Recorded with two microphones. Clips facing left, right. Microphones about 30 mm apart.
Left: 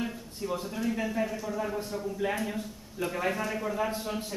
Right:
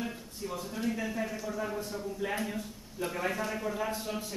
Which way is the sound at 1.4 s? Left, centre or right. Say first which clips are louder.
Left 2 dB; centre.